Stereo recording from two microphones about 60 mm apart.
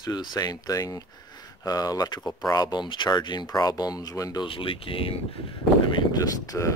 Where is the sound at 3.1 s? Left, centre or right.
Left.